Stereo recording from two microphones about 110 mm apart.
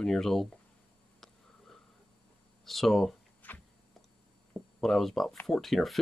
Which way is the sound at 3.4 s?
15° left (ahead or behind).